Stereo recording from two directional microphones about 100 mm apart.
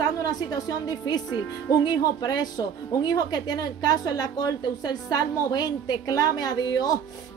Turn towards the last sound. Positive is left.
turn(degrees=40)  # may be behind; listen again after turning